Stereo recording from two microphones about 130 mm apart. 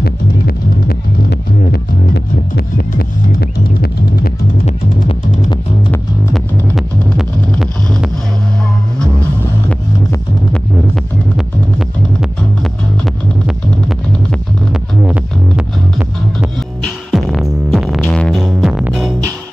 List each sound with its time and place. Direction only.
4.6 s music: 60° left (ahead or behind)
6.3 s music: centre (ahead or behind)
13.0 s music: centre (ahead or behind)